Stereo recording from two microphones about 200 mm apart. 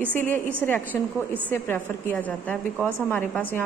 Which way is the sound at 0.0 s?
10° left (ahead or behind).